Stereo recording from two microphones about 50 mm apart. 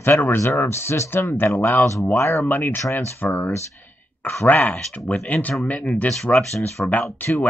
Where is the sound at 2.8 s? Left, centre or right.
Left.